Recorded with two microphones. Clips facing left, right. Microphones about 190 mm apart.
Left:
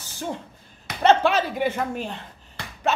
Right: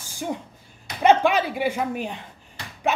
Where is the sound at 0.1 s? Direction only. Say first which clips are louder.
Right 2 dB; 10° right (ahead or behind).